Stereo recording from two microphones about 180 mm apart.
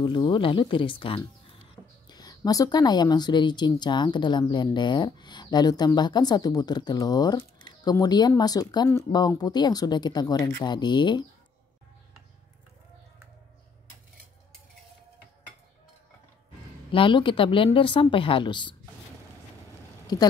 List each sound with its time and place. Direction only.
0.0 s a woman's voice: 25° left (ahead or behind)
16.9 s a woman's voice: 30° left (ahead or behind)